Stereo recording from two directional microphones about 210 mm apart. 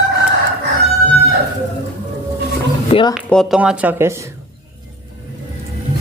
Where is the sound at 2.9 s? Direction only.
25° left (ahead or behind).